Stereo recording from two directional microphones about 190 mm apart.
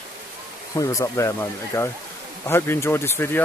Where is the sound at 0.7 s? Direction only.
15° left (ahead or behind).